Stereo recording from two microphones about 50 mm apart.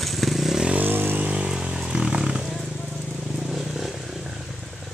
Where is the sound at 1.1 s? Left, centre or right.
Right.